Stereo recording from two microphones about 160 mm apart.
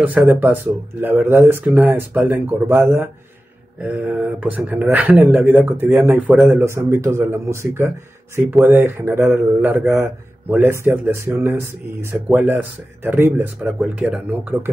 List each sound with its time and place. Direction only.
0.0 s speech: 10° right (ahead or behind)